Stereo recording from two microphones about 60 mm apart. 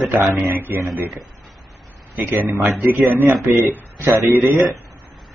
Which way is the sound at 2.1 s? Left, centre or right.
Right.